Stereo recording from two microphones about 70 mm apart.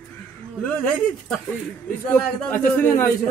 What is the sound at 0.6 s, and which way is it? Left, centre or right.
Speech, centre.